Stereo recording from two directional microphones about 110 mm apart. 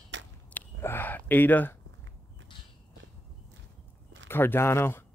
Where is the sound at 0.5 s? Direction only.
20° left (ahead or behind).